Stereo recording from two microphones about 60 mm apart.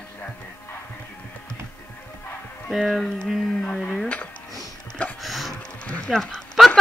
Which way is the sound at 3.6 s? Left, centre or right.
Left.